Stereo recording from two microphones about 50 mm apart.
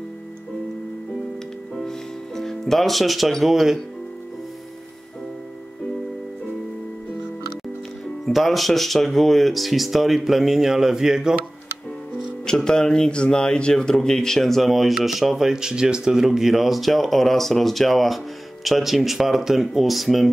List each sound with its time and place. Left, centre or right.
1.8 s music: centre
8.3 s speech: centre
12.4 s speech: centre